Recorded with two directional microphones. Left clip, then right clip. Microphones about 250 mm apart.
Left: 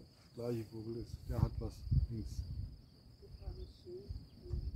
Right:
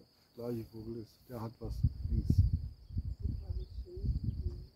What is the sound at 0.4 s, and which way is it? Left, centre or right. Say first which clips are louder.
Cricket: even; centre.